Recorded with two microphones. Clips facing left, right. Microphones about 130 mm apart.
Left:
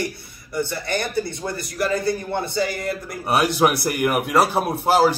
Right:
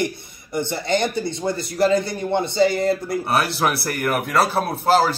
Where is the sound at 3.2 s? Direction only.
15° left (ahead or behind).